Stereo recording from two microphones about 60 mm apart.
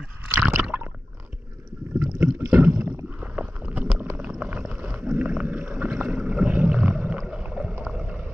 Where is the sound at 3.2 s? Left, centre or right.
Right.